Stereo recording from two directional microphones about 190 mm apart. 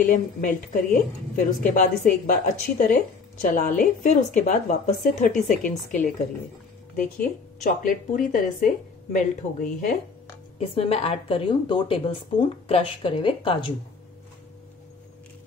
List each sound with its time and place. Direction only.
0.1 s a woman's voice: 45° left (ahead or behind)
10.6 s a woman's voice: 30° left (ahead or behind)